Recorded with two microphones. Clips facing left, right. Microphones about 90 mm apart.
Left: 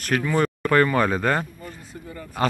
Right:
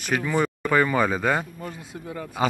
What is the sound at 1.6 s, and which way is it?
Speech, 85° right.